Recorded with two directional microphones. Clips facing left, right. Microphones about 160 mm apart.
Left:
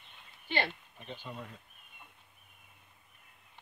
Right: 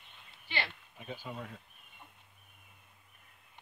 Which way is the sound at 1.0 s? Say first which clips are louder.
Right 2 dB; 10° right (ahead or behind).